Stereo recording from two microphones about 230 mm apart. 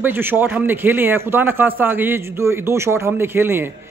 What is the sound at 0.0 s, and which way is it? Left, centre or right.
A man's voice, centre.